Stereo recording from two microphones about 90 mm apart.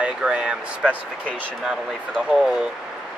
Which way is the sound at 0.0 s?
10° right (ahead or behind).